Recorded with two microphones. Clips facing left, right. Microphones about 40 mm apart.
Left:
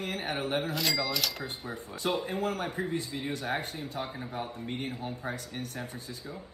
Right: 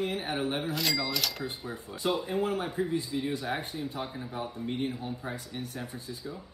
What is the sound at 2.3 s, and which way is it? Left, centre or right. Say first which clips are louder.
Speech: right 2 dB; right.